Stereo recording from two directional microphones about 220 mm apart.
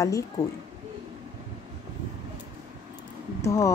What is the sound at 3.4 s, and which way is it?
Speech, 15° left (ahead or behind).